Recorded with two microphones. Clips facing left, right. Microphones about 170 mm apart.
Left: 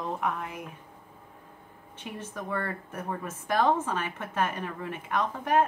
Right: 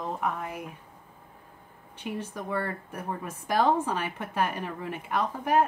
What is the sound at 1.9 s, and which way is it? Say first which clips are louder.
A woman's voice: right 4 dB; 10° right (ahead or behind).